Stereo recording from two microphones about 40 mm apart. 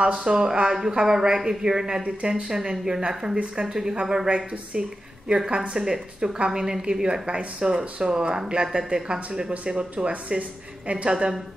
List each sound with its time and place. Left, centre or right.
0.0 s speech: right
2.0 s a woman's voice: right